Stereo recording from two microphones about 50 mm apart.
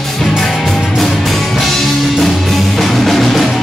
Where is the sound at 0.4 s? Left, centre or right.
Centre.